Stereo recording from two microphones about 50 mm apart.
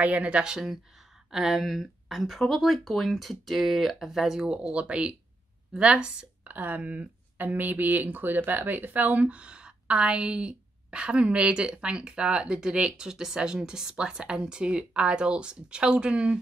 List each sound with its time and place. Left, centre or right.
0.0 s a woman's voice: right
0.5 s speech: centre
4.5 s a woman's voice: right
6.4 s speech: right
9.4 s a woman's voice: right